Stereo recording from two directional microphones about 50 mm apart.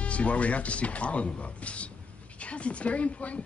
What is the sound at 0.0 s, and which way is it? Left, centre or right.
Speech, left.